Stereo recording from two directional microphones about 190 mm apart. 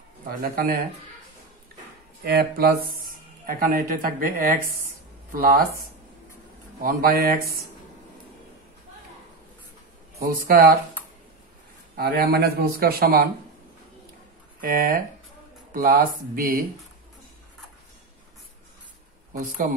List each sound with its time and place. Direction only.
0.4 s speech: 50° right (ahead or behind)
2.2 s speech: 55° right (ahead or behind)
6.8 s speech: 50° right (ahead or behind)
10.1 s speech: 50° right (ahead or behind)
12.0 s speech: 55° right (ahead or behind)
14.6 s speech: 50° right (ahead or behind)
19.3 s speech: 45° right (ahead or behind)